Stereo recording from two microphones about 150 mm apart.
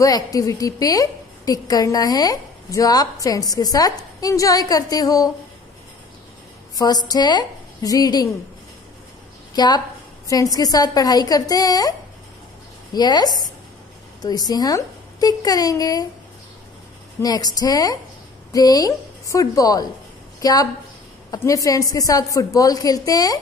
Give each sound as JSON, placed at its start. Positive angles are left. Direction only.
{"t": 0.0, "sound": "a woman's voice", "side_deg": 25}
{"t": 6.8, "sound": "a woman's voice", "side_deg": 25}
{"t": 9.5, "sound": "a woman's voice", "side_deg": 25}
{"t": 12.9, "sound": "a woman's voice", "side_deg": 25}
{"t": 17.2, "sound": "a woman's voice", "side_deg": 25}